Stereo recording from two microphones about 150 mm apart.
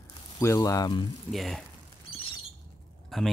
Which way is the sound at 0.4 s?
20° left (ahead or behind).